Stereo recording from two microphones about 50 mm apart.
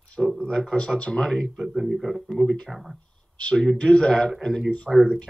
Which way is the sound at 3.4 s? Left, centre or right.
Centre.